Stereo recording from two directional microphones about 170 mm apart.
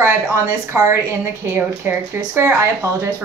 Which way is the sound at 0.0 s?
15° right (ahead or behind).